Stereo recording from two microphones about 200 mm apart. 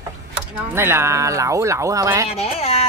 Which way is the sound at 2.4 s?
30° left (ahead or behind).